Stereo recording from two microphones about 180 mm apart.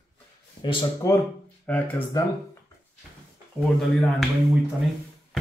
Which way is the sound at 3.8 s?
Centre (ahead or behind).